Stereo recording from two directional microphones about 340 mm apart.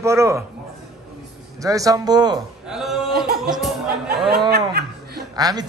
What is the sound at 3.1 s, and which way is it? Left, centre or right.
Music, right.